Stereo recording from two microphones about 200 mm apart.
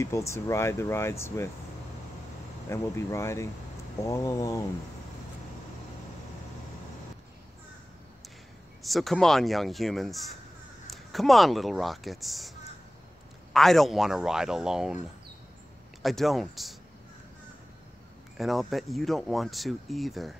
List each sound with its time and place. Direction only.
0.0 s speech: 15° left (ahead or behind)
2.7 s speech: 15° left (ahead or behind)
8.8 s speech: centre (ahead or behind)
16.0 s speech: centre (ahead or behind)
18.4 s speech: centre (ahead or behind)